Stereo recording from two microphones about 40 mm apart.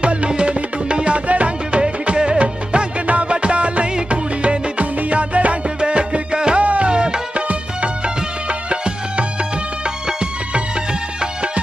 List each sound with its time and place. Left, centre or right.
0.0 s music: right
1.8 s music: right
6.6 s music: right
6.9 s music: right
8.5 s music: right